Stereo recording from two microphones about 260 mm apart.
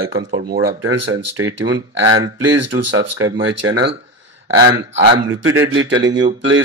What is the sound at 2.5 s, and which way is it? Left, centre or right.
Speech, right.